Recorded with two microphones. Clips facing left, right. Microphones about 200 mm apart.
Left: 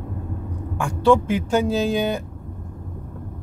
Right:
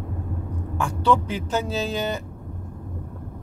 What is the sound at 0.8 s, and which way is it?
Speech, 15° left (ahead or behind).